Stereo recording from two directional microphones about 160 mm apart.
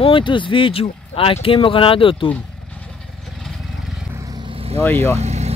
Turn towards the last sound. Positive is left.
turn(degrees=-45)  # may be behind; listen again after turning